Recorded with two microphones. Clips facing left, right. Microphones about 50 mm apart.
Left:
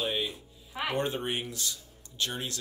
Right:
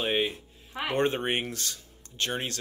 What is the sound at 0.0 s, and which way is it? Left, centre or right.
Speech, right.